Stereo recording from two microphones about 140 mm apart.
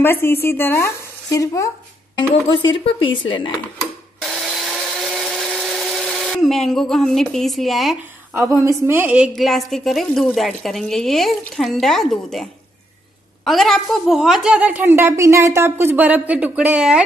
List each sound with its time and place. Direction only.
0.0 s speech: 15° left (ahead or behind)
2.1 s speech: 35° left (ahead or behind)
4.2 s a sound: centre (ahead or behind)
5.4 s tools: centre (ahead or behind)
8.3 s a woman's voice: 20° right (ahead or behind)